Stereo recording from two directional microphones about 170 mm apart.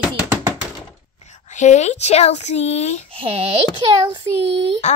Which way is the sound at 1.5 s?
45° left (ahead or behind).